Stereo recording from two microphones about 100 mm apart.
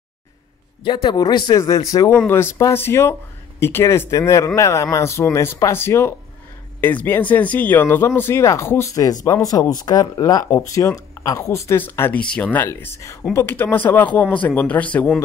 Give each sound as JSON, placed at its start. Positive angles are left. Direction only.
{"t": 0.9, "sound": "speech", "side_deg": 45}
{"t": 1.5, "sound": "speech", "side_deg": 35}
{"t": 2.0, "sound": "speech", "side_deg": 25}
{"t": 12.5, "sound": "speech", "side_deg": 20}